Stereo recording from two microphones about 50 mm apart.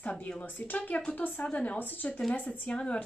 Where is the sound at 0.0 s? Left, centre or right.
Left.